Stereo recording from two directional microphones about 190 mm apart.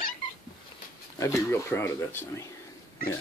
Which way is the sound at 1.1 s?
15° left (ahead or behind).